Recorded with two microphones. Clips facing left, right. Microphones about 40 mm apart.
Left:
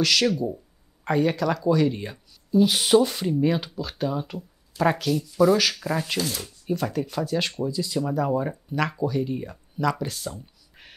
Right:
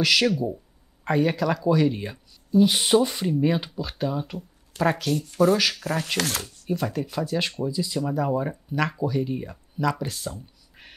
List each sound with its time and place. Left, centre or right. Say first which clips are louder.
0.0 s speech: right 1 dB; centre
5.2 s speech: left 1 dB; right
6.7 s speech: left 1 dB; centre